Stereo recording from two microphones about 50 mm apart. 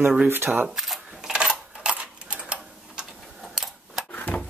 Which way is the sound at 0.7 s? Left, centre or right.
Centre.